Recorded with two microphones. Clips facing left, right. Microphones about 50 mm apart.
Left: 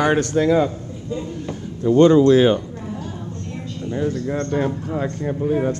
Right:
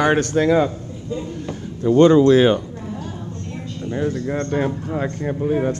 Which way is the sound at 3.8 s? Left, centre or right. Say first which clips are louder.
Even; right.